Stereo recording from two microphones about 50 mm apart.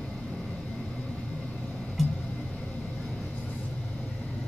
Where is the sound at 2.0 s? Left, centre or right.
Centre.